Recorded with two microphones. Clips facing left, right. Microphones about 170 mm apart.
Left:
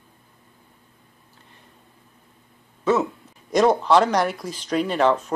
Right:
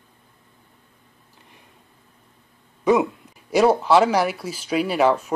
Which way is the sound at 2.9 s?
15° right (ahead or behind).